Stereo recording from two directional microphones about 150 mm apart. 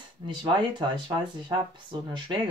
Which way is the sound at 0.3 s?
30° right (ahead or behind).